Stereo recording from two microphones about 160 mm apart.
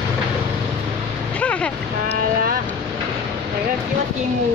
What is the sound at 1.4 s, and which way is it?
Vehicle, 10° left (ahead or behind).